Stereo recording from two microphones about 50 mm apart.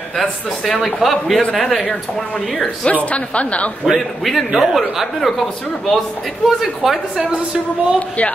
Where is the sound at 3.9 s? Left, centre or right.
Centre.